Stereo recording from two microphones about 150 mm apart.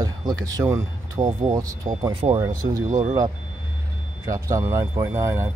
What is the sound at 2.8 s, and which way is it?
Speech, 55° right (ahead or behind).